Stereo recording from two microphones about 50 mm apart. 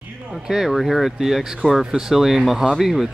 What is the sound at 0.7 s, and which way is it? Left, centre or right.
Speech, centre.